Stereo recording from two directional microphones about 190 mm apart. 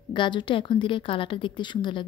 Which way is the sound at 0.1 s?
25° left (ahead or behind).